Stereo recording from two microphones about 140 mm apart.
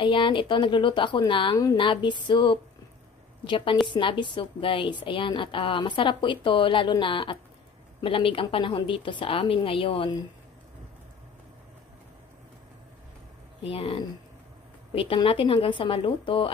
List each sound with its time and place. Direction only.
0.0 s a woman's voice: 35° left (ahead or behind)
13.7 s a woman's voice: 40° left (ahead or behind)
15.2 s a woman's voice: 40° left (ahead or behind)